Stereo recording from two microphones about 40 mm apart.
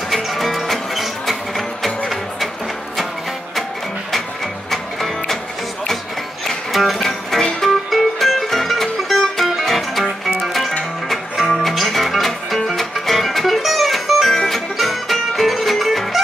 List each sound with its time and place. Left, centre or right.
0.1 s music: centre
4.6 s music: centre
6.7 s music: centre